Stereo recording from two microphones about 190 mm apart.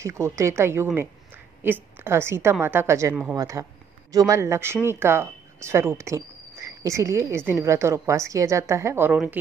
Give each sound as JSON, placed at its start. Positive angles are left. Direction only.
{"t": 0.0, "sound": "a woman's voice", "side_deg": -15}